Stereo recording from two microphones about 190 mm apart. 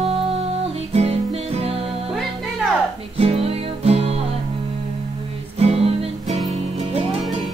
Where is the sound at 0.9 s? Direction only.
30° right (ahead or behind).